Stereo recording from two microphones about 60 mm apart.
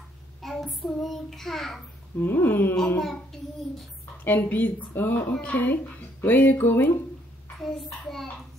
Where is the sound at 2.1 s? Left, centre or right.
Left.